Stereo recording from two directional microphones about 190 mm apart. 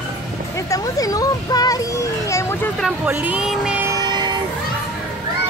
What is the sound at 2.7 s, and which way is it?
Speech, centre (ahead or behind).